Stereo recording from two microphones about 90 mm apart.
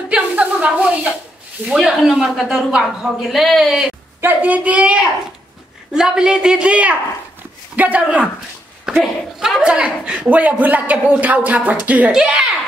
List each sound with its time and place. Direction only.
0.1 s a sound: 15° right (ahead or behind)
1.7 s a woman's voice: 5° right (ahead or behind)
4.2 s a man's voice: 20° right (ahead or behind)
8.8 s speech: centre (ahead or behind)
9.6 s a man's voice: 15° right (ahead or behind)